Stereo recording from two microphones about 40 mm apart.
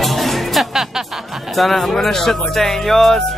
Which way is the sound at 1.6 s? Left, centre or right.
Centre.